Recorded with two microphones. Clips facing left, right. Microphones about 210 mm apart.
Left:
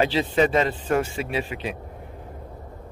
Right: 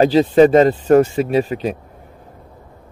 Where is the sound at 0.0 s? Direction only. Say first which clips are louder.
Right 10 dB; 40° right (ahead or behind).